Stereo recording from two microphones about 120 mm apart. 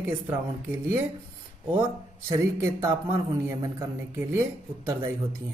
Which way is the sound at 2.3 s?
25° right (ahead or behind).